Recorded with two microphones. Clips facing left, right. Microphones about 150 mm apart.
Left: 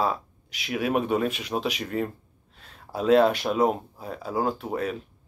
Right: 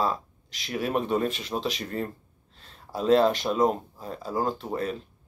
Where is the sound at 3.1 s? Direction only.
10° left (ahead or behind).